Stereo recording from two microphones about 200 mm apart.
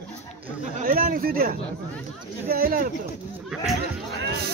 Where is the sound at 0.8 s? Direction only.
45° right (ahead or behind).